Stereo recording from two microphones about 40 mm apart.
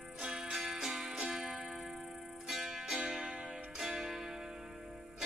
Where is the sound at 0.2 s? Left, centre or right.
Centre.